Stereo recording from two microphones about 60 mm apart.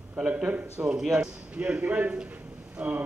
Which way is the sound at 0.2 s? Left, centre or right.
Right.